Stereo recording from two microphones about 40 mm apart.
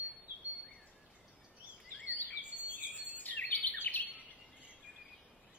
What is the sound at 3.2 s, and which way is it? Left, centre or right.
Bird vocalization, left.